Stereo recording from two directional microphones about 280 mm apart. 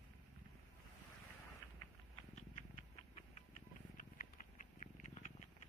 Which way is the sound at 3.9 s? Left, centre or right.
Left.